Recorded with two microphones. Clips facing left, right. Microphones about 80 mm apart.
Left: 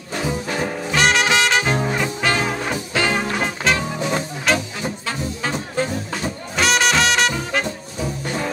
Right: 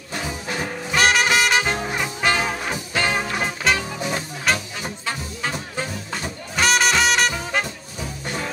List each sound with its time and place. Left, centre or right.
0.9 s music: centre